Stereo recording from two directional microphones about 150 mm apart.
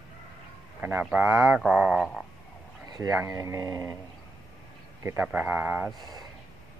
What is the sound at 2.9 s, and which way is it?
Speech, 20° right (ahead or behind).